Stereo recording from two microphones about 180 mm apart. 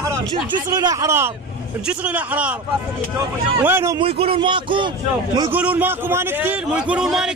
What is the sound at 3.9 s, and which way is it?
Speech, 30° right (ahead or behind).